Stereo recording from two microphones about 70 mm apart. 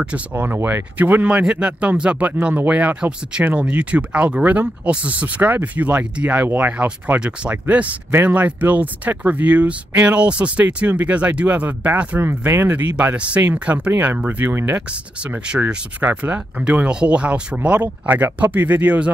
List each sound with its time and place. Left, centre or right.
0.3 s speech: right
8.1 s speech: right
12.2 s speech: right
12.9 s speech: centre